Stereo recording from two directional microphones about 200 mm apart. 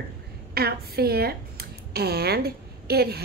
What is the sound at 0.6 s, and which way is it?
Speech, 50° right (ahead or behind).